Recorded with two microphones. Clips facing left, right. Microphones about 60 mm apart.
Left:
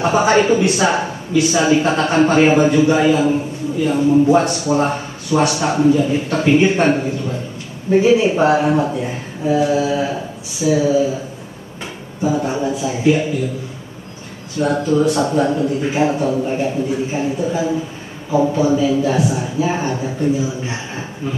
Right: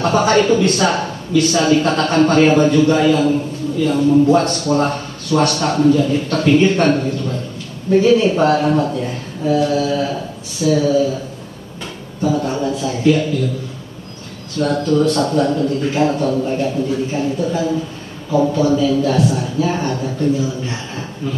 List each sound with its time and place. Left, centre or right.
0.0 s speech: centre
14.5 s speech: centre